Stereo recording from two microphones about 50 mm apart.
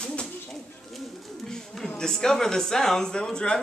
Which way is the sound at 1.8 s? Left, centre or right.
Centre.